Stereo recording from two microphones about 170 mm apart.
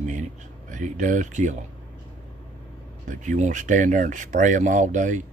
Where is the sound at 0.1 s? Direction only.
50° right (ahead or behind).